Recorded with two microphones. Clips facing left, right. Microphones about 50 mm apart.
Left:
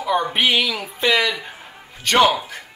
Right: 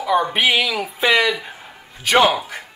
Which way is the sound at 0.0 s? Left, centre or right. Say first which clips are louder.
Right 2 dB; centre.